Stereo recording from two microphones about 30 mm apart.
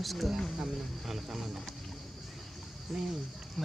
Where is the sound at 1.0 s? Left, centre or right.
Centre.